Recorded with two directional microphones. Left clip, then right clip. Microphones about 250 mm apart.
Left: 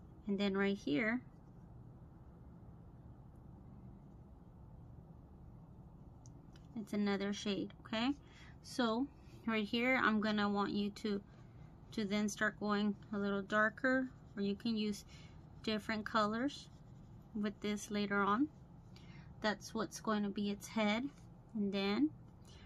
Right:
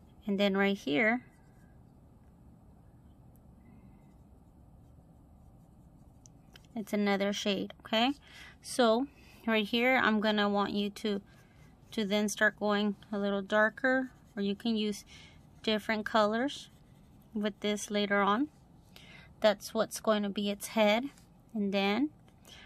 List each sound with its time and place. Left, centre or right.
0.3 s speech: right
6.7 s a woman's voice: right